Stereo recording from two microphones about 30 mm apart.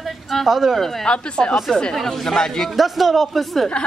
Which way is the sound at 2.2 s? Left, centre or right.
Centre.